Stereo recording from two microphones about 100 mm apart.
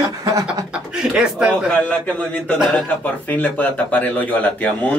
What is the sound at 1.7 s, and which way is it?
Speech, 15° left (ahead or behind).